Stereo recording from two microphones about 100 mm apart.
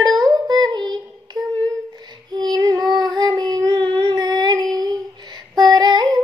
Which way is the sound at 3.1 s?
45° right (ahead or behind).